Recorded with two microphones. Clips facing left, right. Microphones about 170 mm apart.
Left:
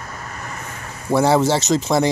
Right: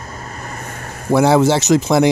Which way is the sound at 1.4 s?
10° right (ahead or behind).